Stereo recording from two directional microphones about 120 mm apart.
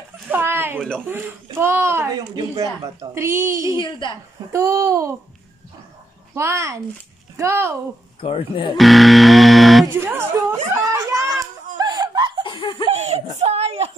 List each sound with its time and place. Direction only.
0.3 s a sound: 20° right (ahead or behind)
0.7 s speech: 5° left (ahead or behind)
1.0 s a woman's voice: 15° right (ahead or behind)
3.7 s a woman's voice: 40° left (ahead or behind)
4.5 s a woman's voice: 25° right (ahead or behind)
6.3 s a woman's voice: 25° right (ahead or behind)
8.2 s speech: 45° left (ahead or behind)
8.7 s music: centre (ahead or behind)
9.9 s a woman's voice: 20° right (ahead or behind)
11.1 s a sound: 30° right (ahead or behind)
11.7 s snicker: 35° right (ahead or behind)
12.4 s laughter: 45° left (ahead or behind)
12.8 s snicker: 60° right (ahead or behind)
13.4 s a child's voice: 60° right (ahead or behind)